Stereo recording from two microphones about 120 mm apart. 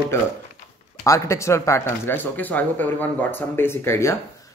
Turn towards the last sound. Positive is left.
turn(degrees=20)  # may be behind; listen again after turning